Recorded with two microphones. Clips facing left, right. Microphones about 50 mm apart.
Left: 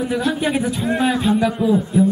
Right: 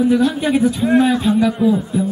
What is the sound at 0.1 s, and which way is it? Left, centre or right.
A man's voice, centre.